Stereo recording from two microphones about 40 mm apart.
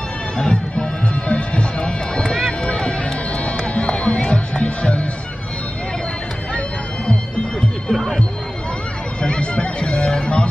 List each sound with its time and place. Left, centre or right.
0.4 s music: left
1.3 s run: left
3.4 s music: left
7.9 s music: centre
9.2 s music: left